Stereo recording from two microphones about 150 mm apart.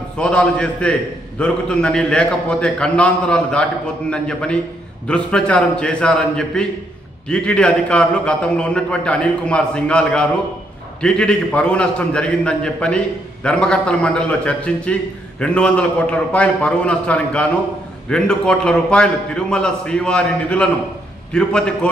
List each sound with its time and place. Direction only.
0.2 s a man's voice: 5° left (ahead or behind)